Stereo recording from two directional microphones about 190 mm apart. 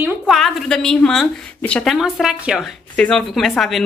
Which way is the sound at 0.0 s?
Centre (ahead or behind).